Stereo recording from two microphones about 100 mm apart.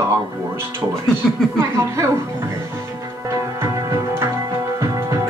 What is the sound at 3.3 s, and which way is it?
Music, 30° right (ahead or behind).